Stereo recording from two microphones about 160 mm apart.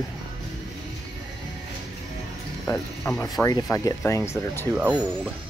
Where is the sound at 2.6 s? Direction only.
15° left (ahead or behind).